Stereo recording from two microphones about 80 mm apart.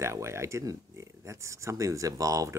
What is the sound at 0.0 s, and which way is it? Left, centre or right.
Speech, right.